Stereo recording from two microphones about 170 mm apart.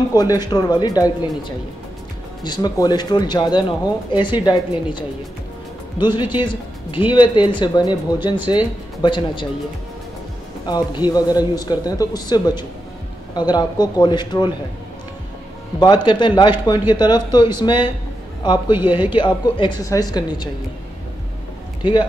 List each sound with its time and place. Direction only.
0.1 s speech: 20° left (ahead or behind)
2.4 s speech: 25° left (ahead or behind)
10.7 s speech: 25° left (ahead or behind)
15.8 s speech: 25° left (ahead or behind)